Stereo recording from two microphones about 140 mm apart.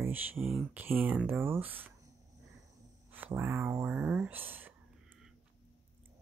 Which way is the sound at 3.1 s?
15° right (ahead or behind).